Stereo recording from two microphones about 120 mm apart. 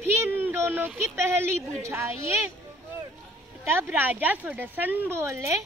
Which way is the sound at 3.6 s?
15° right (ahead or behind).